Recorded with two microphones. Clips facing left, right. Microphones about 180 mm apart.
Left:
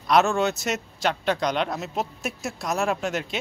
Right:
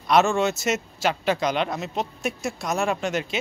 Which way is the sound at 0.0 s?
Centre (ahead or behind).